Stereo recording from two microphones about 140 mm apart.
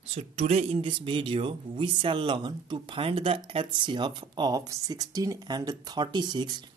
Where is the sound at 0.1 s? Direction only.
50° right (ahead or behind).